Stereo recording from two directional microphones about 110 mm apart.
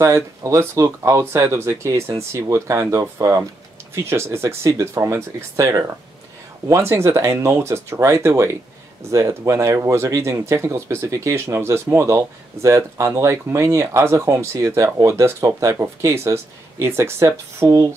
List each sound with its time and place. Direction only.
0.0 s speech: 30° right (ahead or behind)